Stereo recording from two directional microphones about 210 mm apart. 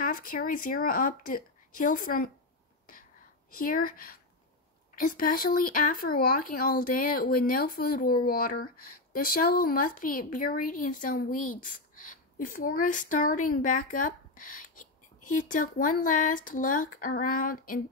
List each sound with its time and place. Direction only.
0.0 s speech: 45° left (ahead or behind)
2.9 s a sound: 40° left (ahead or behind)
4.9 s speech: 40° left (ahead or behind)